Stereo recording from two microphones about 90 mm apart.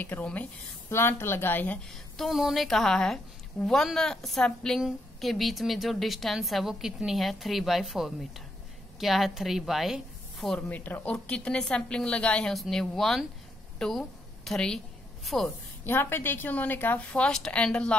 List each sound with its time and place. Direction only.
0.0 s a woman's voice: 20° left (ahead or behind)
0.8 s speech: 30° left (ahead or behind)
1.9 s a woman's voice: centre (ahead or behind)
10.7 s a woman's voice: 20° left (ahead or behind); by 15.5 s 5° left (ahead or behind)
15.8 s a woman's voice: 25° left (ahead or behind)